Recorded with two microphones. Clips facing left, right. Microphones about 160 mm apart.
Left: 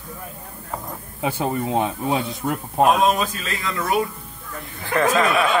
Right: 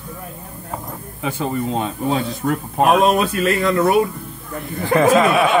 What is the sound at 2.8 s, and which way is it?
Speech, 70° right (ahead or behind).